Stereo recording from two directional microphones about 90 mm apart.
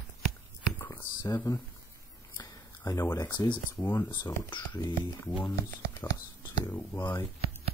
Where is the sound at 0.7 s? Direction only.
25° left (ahead or behind).